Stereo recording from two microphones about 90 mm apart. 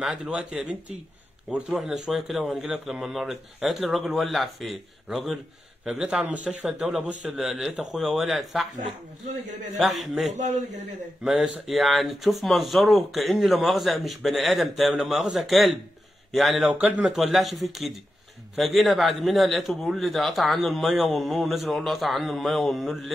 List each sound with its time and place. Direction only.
0.0 s speech: 5° right (ahead or behind)
9.8 s speech: centre (ahead or behind)
16.6 s speech: 15° right (ahead or behind)
17.0 s speech: centre (ahead or behind)